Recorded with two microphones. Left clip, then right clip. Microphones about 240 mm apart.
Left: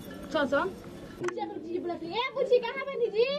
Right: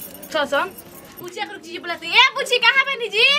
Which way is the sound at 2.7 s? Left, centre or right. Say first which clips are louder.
Right 11 dB; right.